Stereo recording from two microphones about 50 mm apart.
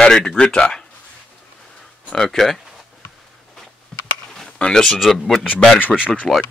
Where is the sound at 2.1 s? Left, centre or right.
Centre.